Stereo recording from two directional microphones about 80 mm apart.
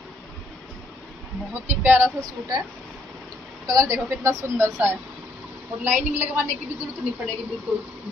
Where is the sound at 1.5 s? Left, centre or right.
Right.